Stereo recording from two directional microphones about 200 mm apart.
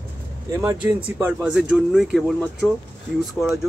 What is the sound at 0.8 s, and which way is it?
Speech, 10° right (ahead or behind).